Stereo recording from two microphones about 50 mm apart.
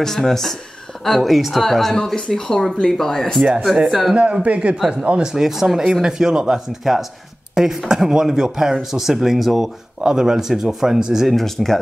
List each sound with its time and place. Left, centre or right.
0.0 s speech: centre
3.6 s speech: centre
4.1 s speech: right
11.2 s speech: centre